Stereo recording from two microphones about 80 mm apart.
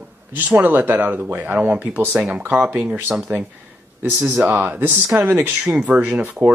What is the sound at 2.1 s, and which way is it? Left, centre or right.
Speech, centre.